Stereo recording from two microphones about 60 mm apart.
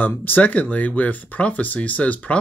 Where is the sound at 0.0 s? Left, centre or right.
Left.